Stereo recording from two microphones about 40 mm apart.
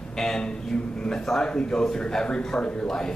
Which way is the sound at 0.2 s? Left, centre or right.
Centre.